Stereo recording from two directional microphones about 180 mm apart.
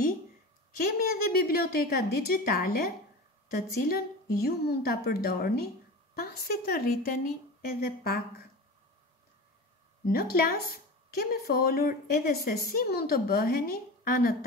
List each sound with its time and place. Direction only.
0.9 s a woman's voice: 60° left (ahead or behind)
10.0 s a woman's voice: 60° left (ahead or behind)